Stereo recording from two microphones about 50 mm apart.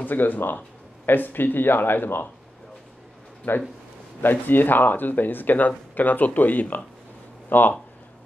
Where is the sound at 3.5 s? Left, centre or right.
Left.